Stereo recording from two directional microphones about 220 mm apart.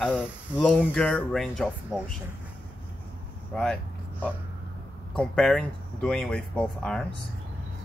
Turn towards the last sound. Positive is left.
turn(degrees=5)  # may be behind; listen again after turning